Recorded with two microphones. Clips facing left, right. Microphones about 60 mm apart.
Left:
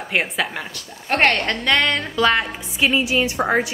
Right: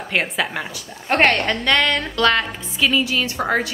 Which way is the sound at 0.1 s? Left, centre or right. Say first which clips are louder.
Even; centre.